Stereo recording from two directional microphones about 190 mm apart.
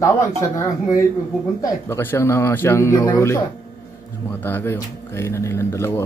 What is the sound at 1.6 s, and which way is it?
Speech, 10° left (ahead or behind).